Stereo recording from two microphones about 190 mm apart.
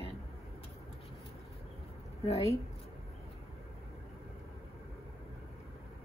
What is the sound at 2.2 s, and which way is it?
Speech, 35° left (ahead or behind).